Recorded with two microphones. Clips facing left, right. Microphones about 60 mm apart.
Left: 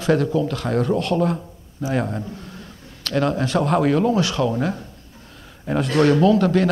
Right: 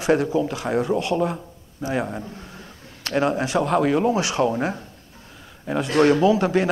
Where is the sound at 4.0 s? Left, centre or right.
Centre.